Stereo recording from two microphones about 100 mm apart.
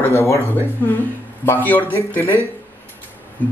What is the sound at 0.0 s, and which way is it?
A man's voice, 25° left (ahead or behind).